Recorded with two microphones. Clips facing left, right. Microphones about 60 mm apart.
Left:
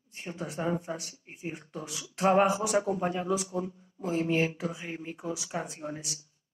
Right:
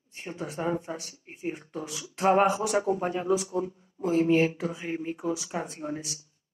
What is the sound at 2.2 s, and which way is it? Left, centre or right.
Speech, centre.